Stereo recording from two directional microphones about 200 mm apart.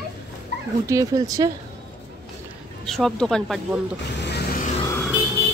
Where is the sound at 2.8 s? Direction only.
Centre (ahead or behind).